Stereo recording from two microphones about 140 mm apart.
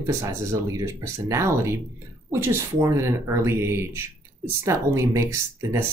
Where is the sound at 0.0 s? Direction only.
20° right (ahead or behind).